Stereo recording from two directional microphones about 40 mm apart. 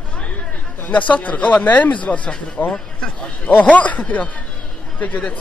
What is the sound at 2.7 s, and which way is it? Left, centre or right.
Speech, left.